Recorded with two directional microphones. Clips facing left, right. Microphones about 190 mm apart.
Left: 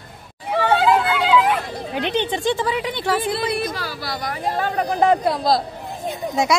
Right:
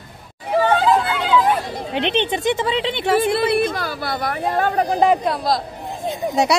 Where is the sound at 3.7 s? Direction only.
55° right (ahead or behind).